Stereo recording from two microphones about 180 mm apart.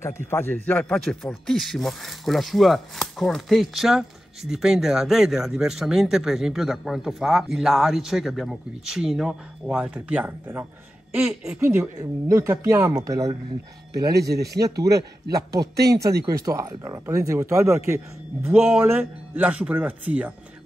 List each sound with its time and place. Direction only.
0.3 s a man's voice: 10° left (ahead or behind); by 13.4 s 20° right (ahead or behind)
14.1 s speech: 60° right (ahead or behind)
14.6 s speech: 20° right (ahead or behind)